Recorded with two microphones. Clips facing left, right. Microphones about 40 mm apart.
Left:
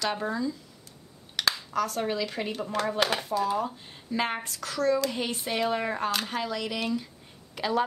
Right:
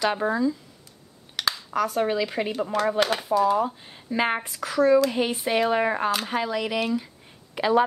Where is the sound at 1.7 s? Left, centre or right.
Centre.